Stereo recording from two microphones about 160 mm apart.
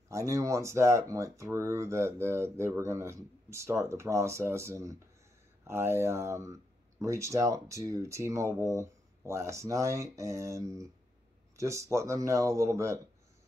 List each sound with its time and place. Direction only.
0.1 s speech: 20° right (ahead or behind)